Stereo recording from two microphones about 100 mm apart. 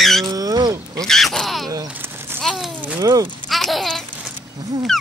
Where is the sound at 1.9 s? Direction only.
20° right (ahead or behind).